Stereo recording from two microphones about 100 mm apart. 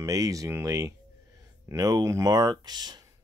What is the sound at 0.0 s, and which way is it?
Speech, 35° right (ahead or behind).